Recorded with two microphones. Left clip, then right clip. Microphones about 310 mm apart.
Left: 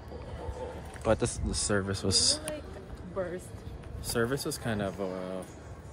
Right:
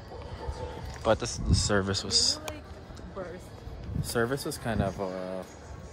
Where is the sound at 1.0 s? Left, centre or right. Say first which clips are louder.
Right 2 dB; centre.